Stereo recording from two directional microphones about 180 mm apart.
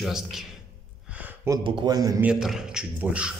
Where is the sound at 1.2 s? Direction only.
10° right (ahead or behind).